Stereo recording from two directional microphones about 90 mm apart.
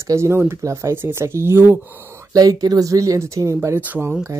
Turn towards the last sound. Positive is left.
turn(degrees=-20)  # may be behind; listen again after turning